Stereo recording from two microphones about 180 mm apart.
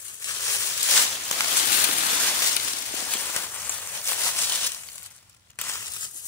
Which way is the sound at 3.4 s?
10° left (ahead or behind).